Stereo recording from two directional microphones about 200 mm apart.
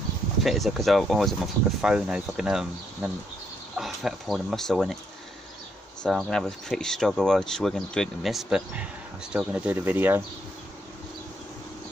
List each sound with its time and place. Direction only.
0.4 s speech: centre (ahead or behind)
6.0 s speech: centre (ahead or behind)